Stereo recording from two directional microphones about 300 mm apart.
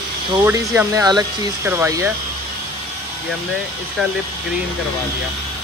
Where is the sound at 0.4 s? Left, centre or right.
Centre.